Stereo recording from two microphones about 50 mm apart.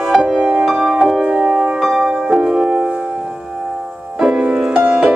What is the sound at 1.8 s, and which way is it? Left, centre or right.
Music, centre.